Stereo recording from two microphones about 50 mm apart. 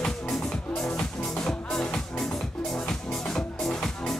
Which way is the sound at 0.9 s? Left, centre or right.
Left.